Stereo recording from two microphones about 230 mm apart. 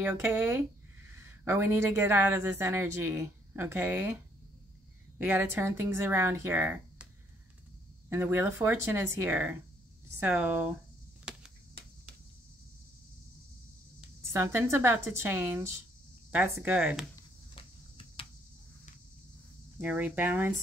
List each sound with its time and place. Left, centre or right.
0.0 s speech: centre
5.2 s speech: centre
8.1 s speech: centre
11.3 s a sound: centre
14.2 s speech: centre
17.1 s a sound: left
19.8 s speech: centre